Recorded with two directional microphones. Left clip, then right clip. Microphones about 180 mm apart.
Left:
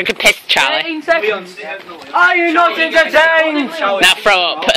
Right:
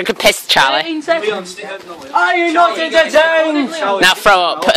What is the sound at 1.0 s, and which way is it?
A woman's voice, 5° left (ahead or behind).